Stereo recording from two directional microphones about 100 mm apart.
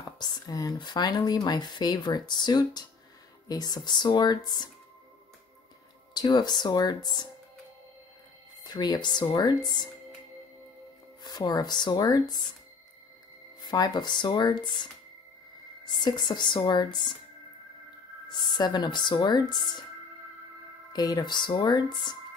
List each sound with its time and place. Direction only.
0.2 s speech: 40° left (ahead or behind)
6.1 s speech: 45° left (ahead or behind)
8.6 s speech: 45° left (ahead or behind)
11.2 s speech: 40° left (ahead or behind)
13.6 s speech: 45° left (ahead or behind)
18.3 s speech: 45° left (ahead or behind)
20.9 s speech: 40° left (ahead or behind)